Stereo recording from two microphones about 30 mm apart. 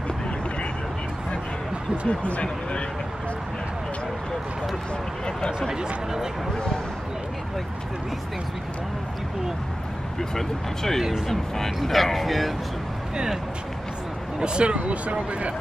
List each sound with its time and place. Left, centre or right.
2.0 s speech: left
10.3 s speech: centre
14.4 s speech: right
14.9 s speech: right